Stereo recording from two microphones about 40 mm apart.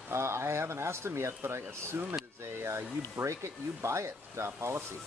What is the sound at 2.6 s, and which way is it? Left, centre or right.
Speech, right.